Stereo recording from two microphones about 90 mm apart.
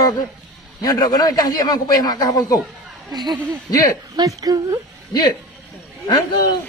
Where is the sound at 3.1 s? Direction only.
55° right (ahead or behind).